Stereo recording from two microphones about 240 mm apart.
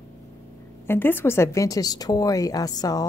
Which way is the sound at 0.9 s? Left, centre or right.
Centre.